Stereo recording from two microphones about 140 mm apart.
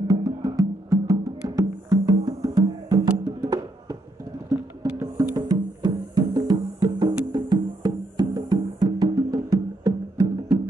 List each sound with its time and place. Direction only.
0.1 s music: 25° right (ahead or behind)